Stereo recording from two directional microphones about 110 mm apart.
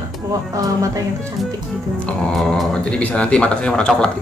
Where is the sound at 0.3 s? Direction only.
30° right (ahead or behind).